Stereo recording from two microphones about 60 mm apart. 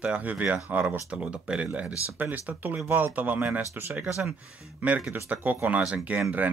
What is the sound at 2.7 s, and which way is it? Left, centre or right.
Speech, right.